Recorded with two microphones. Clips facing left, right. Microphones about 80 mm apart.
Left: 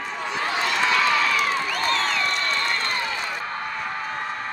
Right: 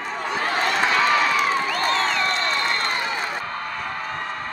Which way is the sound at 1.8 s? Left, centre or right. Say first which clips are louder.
Right 1 dB; right.